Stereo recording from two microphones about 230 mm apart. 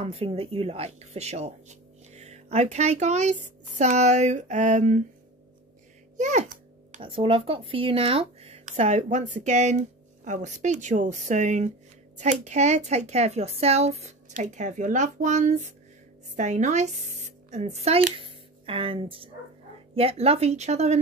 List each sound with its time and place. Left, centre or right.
0.0 s speech: right
6.1 s a child's voice: right